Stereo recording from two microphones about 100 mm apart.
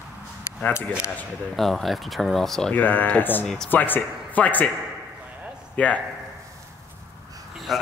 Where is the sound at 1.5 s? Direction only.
Centre (ahead or behind).